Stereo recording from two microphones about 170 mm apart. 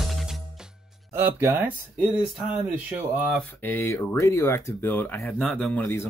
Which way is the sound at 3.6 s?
10° left (ahead or behind).